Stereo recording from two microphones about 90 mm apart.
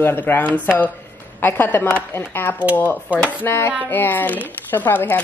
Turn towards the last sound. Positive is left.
turn(degrees=20)  # may be behind; listen again after turning